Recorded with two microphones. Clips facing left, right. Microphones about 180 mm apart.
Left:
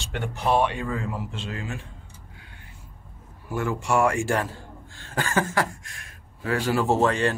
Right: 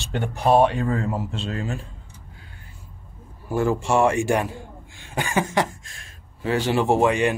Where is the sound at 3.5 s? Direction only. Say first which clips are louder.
Right 4 dB; 30° right (ahead or behind).